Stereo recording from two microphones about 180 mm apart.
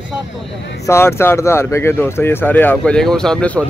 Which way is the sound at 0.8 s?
15° left (ahead or behind).